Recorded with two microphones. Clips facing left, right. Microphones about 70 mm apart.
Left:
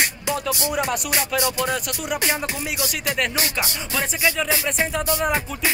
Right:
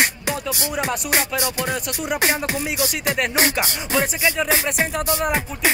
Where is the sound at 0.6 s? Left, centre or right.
Centre.